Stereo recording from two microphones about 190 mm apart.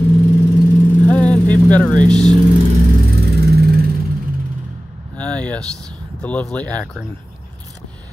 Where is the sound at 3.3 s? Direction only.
55° right (ahead or behind).